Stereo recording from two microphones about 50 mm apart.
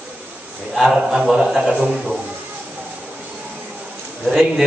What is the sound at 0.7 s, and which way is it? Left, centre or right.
A man's voice, centre.